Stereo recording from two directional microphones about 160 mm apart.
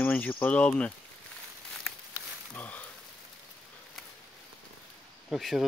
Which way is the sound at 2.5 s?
10° left (ahead or behind).